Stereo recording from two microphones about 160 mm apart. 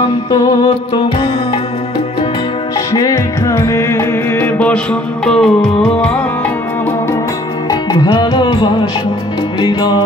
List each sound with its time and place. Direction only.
0.3 s music: 25° left (ahead or behind)
2.9 s music: 20° left (ahead or behind); by 6.1 s 5° left (ahead or behind)
7.9 s music: 25° left (ahead or behind)